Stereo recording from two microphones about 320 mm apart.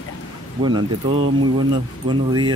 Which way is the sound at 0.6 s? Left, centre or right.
Centre.